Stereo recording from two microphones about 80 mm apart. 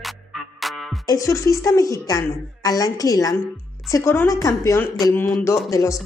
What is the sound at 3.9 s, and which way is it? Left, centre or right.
Speech, left.